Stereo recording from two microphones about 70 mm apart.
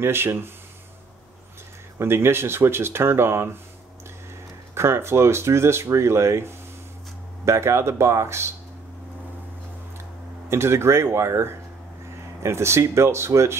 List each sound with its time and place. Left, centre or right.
0.0 s speech: right
2.0 s speech: right
4.7 s speech: right
10.5 s speech: right